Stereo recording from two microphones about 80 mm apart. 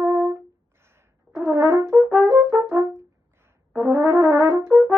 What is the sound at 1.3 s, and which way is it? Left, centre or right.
Brass instrument, right.